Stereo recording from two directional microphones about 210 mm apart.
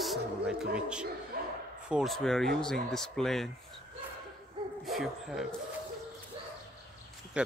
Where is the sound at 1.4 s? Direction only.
40° right (ahead or behind).